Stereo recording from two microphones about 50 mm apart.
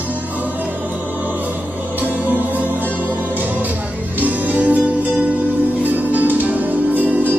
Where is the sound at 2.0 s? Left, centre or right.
Right.